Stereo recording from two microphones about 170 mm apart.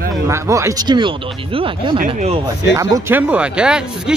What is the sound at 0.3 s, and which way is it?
Speech, 15° right (ahead or behind).